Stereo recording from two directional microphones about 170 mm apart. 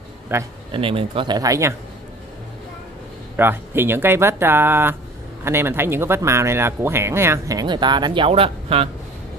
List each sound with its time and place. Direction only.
0.3 s speech: 15° right (ahead or behind)
0.7 s speech: 30° right (ahead or behind)
3.3 s speech: 15° right (ahead or behind); by 8.8 s 35° right (ahead or behind)